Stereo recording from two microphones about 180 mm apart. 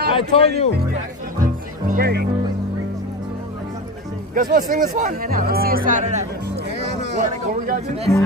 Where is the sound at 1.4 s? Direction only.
50° right (ahead or behind).